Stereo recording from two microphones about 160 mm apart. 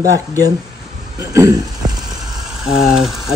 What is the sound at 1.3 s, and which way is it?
Speech, 20° right (ahead or behind).